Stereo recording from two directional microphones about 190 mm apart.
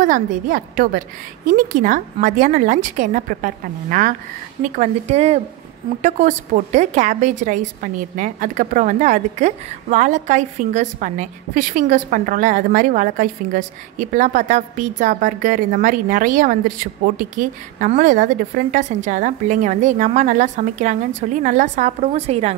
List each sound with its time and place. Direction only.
0.0 s a woman's voice: 45° right (ahead or behind)